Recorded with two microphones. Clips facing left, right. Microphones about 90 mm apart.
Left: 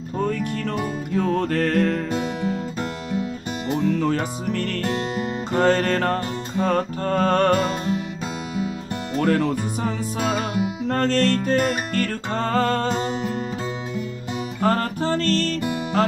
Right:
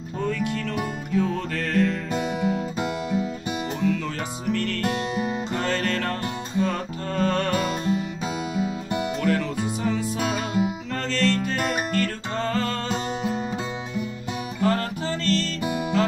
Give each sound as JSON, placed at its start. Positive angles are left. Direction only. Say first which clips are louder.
{"t": 0.2, "sound": "music", "louder": "left 2 dB", "side_deg": 45}
{"t": 2.4, "sound": "music", "louder": "right 1 dB", "side_deg": -10}
{"t": 3.8, "sound": "music", "louder": "left 5 dB", "side_deg": 45}
{"t": 9.2, "sound": "music", "louder": "left 7 dB", "side_deg": 45}
{"t": 14.6, "sound": "music", "louder": "left 3 dB", "side_deg": 45}